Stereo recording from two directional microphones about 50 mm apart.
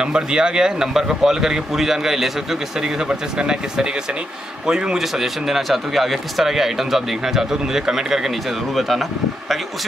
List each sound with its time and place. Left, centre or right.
0.0 s speech: centre
3.1 s speech: centre
5.2 s speech: centre